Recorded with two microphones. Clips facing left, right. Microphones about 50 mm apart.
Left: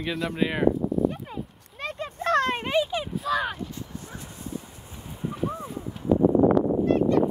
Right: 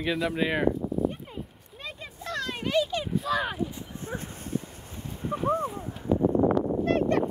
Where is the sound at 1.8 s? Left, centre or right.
Left.